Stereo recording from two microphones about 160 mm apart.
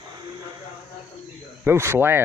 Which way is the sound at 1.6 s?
15° right (ahead or behind).